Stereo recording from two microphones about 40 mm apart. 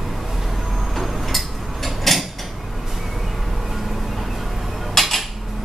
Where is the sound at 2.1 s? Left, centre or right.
Centre.